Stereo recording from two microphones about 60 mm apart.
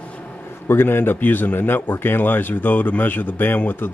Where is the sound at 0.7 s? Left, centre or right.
Left.